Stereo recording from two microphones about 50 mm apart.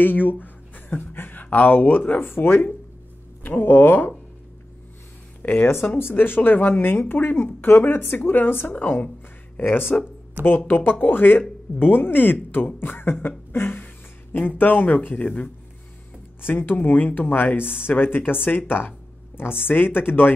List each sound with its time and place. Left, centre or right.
0.0 s speech: left
5.4 s speech: left
10.4 s speech: right
10.7 s speech: left
13.5 s a sound: left
15.0 s speech: left
16.3 s speech: left
19.6 s speech: left